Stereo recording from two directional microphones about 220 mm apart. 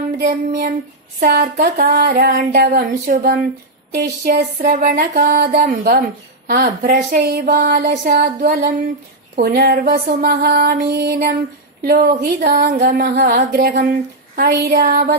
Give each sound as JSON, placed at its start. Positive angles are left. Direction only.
{"t": 0.3, "sound": "music", "side_deg": -35}
{"t": 1.2, "sound": "speech", "side_deg": -35}
{"t": 3.9, "sound": "music", "side_deg": -45}
{"t": 9.3, "sound": "speech", "side_deg": -40}
{"t": 11.8, "sound": "music", "side_deg": -40}
{"t": 12.6, "sound": "speech", "side_deg": -40}
{"t": 14.3, "sound": "music", "side_deg": -45}